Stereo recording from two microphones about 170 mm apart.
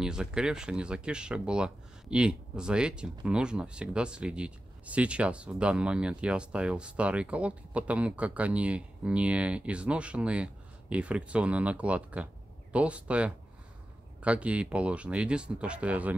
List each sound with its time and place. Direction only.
0.0 s speech: 5° right (ahead or behind)